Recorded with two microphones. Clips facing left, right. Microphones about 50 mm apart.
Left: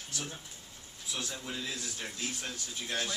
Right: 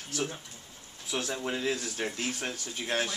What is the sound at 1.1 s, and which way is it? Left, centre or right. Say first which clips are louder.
A man's voice: right 7 dB; right.